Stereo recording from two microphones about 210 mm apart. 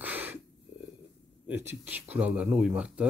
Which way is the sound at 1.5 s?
10° right (ahead or behind).